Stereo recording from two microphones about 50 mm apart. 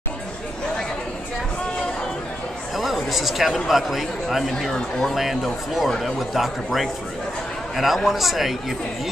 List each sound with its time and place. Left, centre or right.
2.7 s speech: centre
4.6 s speech: centre
5.1 s speech: centre